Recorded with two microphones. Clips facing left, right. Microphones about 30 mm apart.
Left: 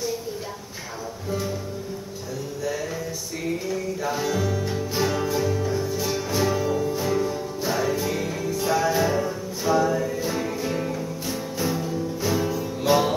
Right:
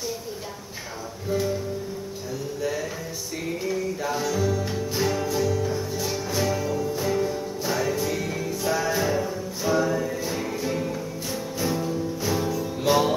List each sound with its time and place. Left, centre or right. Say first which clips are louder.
3.6 s a sound: even; centre
4.2 s music: right 2 dB; centre
5.7 s music: left 2 dB; centre